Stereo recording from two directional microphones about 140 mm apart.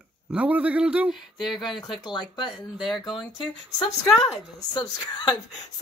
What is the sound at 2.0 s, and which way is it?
A woman's voice, 30° left (ahead or behind).